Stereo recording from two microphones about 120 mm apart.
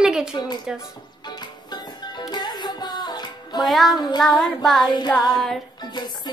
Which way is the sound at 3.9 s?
35° left (ahead or behind).